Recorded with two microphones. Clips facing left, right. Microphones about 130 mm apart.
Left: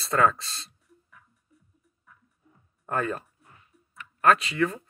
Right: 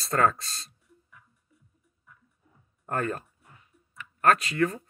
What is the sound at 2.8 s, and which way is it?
Speech, 40° right (ahead or behind).